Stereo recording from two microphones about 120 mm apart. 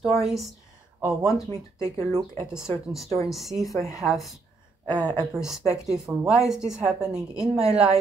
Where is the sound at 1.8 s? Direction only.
20° left (ahead or behind).